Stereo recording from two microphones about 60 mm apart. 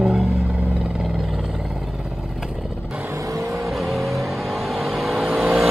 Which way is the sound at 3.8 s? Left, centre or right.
Centre.